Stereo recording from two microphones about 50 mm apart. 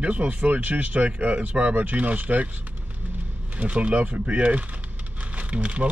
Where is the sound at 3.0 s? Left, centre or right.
Right.